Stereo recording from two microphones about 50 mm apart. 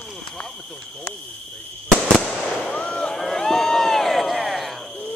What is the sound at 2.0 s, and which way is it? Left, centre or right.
Fireworks, centre.